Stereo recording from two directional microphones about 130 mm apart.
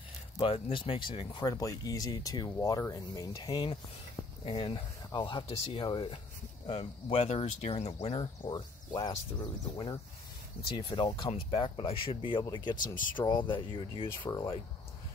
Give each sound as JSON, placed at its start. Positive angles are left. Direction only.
{"t": 0.4, "sound": "speech", "side_deg": 45}
{"t": 8.2, "sound": "speech", "side_deg": 35}
{"t": 12.7, "sound": "speech", "side_deg": 90}
{"t": 13.2, "sound": "speech", "side_deg": 35}